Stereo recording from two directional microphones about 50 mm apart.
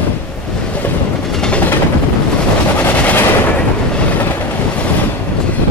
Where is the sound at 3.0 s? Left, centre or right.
Left.